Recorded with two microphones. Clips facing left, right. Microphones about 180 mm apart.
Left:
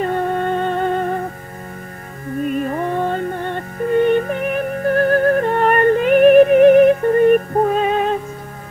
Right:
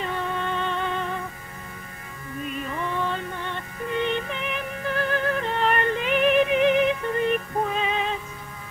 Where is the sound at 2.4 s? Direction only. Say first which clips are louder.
Left 10 dB; 50° left (ahead or behind).